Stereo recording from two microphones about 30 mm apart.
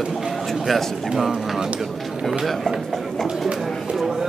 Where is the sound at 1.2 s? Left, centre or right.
Centre.